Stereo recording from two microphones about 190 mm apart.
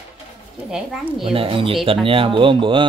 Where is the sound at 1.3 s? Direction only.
30° right (ahead or behind).